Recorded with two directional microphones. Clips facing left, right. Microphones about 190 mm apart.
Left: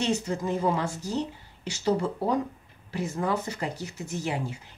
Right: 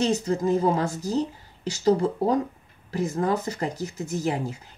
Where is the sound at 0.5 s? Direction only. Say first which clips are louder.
Right 4 dB; 40° right (ahead or behind).